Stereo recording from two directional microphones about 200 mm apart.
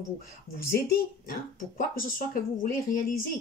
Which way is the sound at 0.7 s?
50° left (ahead or behind).